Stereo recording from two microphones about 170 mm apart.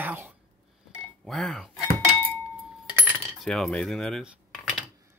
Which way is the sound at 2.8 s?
5° right (ahead or behind).